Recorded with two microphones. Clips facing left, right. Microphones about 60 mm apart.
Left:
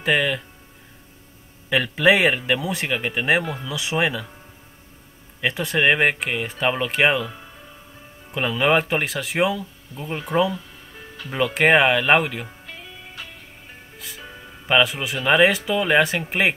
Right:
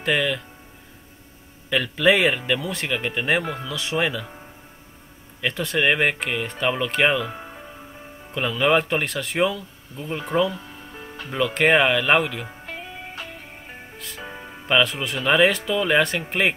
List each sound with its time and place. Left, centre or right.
0.0 s speech: centre
1.7 s speech: centre
5.4 s speech: centre
7.2 s music: right
8.3 s speech: centre
12.6 s music: right
13.9 s music: centre
14.2 s music: right
14.7 s a man's voice: centre